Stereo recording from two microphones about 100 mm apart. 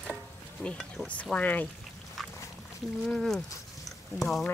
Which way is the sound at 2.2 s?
Centre (ahead or behind).